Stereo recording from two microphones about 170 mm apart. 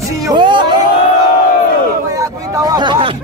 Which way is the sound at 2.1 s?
20° right (ahead or behind).